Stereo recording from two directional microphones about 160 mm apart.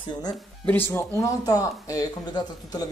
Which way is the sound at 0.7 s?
15° left (ahead or behind).